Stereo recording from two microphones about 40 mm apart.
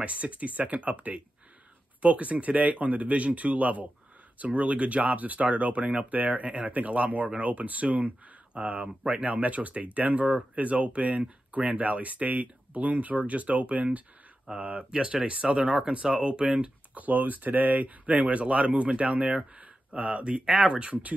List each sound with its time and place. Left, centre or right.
0.0 s speech: right
14.5 s speech: right
16.9 s speech: right